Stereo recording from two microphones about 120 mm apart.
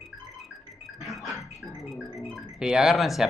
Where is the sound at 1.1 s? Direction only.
Centre (ahead or behind).